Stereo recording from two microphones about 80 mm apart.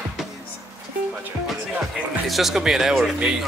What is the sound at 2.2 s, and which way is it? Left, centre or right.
Speech, centre.